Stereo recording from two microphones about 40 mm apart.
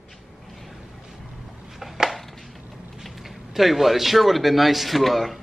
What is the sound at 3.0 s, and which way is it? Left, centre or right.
A man's voice, centre.